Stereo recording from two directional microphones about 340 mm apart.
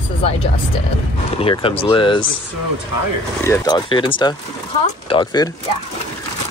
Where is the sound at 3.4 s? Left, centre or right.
Centre.